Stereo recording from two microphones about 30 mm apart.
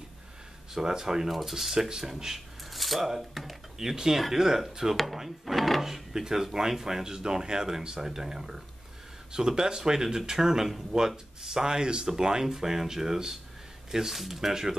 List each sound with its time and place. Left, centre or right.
0.7 s speech: centre
1.9 s speech: centre
2.7 s a sound: centre
3.2 s speech: centre
3.7 s speech: centre
5.9 s speech: centre
14.5 s speech: centre